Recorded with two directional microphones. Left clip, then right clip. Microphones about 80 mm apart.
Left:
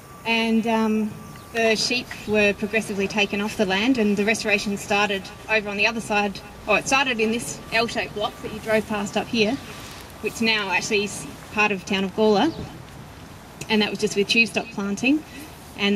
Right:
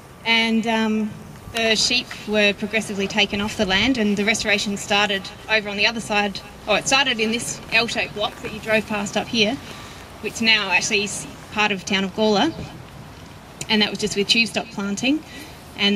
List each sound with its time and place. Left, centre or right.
0.2 s music: right
1.6 s speech: right
13.6 s speech: right